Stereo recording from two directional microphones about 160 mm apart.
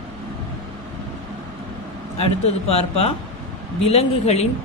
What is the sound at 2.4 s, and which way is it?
A man's voice, 40° left (ahead or behind).